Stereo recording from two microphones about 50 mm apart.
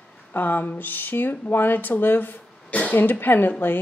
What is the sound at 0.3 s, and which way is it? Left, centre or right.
A woman's voice, left.